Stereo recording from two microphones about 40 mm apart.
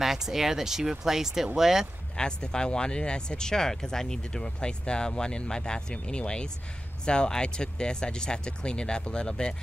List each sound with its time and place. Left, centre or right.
0.0 s speech: centre
2.1 s speech: centre